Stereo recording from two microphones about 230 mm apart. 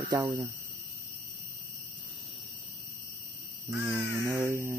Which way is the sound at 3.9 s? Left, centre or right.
Centre.